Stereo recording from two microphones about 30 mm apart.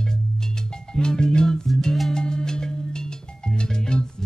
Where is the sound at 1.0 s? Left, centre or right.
Left.